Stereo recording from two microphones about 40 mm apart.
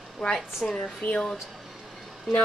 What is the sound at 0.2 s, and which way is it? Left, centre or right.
Speech, centre.